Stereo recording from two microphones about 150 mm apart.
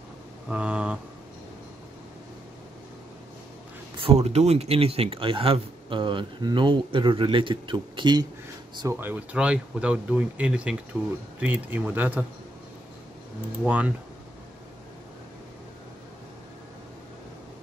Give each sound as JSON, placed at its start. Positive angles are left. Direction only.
{"t": 0.5, "sound": "speech", "side_deg": -5}
{"t": 4.0, "sound": "speech", "side_deg": -45}
{"t": 8.8, "sound": "speech", "side_deg": -10}
{"t": 13.7, "sound": "speech", "side_deg": -10}